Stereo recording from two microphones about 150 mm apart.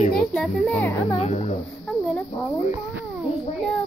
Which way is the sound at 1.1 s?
45° left (ahead or behind).